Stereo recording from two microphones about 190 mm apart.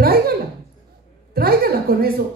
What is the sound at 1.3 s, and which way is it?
Speech, 55° right (ahead or behind).